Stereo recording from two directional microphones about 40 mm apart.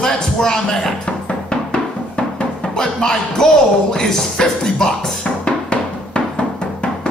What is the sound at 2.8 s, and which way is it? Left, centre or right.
Speech, centre.